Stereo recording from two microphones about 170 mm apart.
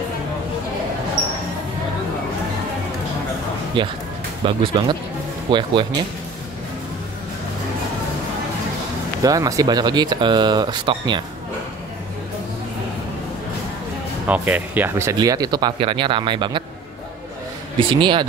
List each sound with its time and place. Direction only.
3.8 s speech: 30° right (ahead or behind)
9.2 s speech: 20° right (ahead or behind)
14.2 s speech: 10° right (ahead or behind); by 16.6 s 30° right (ahead or behind)
17.7 s speech: 30° right (ahead or behind)